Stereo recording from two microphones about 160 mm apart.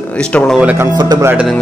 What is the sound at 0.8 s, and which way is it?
Speech, 25° right (ahead or behind).